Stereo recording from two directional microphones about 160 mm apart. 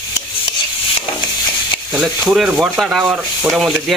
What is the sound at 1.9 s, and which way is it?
Speech, 5° right (ahead or behind).